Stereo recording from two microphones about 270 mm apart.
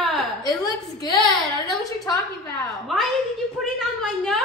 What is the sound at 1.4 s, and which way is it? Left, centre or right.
A woman's voice, centre.